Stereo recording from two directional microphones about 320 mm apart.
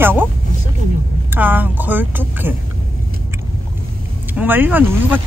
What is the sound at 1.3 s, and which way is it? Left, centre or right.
Speech, centre.